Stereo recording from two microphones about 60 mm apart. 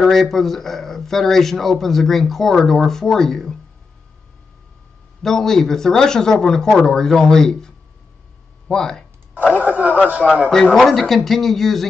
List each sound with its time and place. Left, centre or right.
0.0 s speech: centre
5.2 s speech: centre
9.3 s speech: right
10.5 s speech: centre